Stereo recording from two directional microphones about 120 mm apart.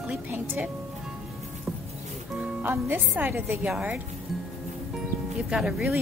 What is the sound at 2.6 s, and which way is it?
A woman's voice, 15° right (ahead or behind).